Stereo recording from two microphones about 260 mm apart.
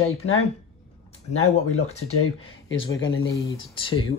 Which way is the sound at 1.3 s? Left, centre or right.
Left.